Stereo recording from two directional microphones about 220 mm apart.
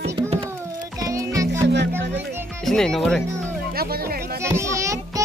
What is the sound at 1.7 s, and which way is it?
Music, 50° right (ahead or behind).